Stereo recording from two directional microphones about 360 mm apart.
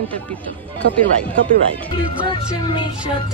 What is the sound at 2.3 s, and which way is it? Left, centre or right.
Music, centre.